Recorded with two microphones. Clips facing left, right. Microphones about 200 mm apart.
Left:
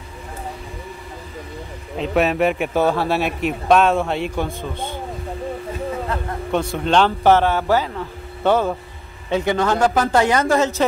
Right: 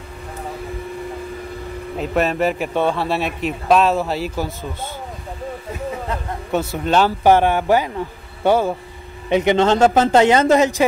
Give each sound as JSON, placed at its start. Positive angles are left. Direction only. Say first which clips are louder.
{"t": 2.0, "sound": "a man's voice", "louder": "left 1 dB", "side_deg": 0}
{"t": 6.5, "sound": "a man's voice", "louder": "even", "side_deg": -5}